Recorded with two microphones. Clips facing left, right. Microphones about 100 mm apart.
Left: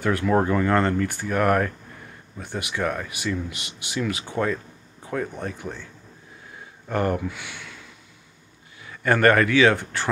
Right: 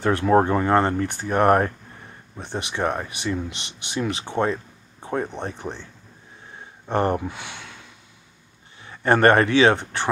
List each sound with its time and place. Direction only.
0.0 s speech: 30° right (ahead or behind)
6.9 s speech: 30° right (ahead or behind)
8.8 s speech: 25° right (ahead or behind)